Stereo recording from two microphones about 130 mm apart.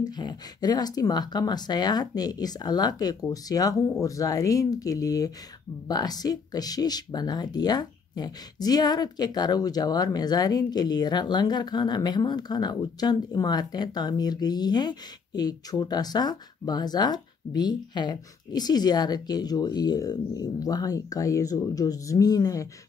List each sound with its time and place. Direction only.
0.0 s speech: 35° left (ahead or behind)